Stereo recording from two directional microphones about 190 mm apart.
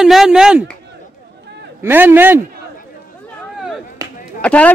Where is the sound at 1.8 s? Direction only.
10° right (ahead or behind).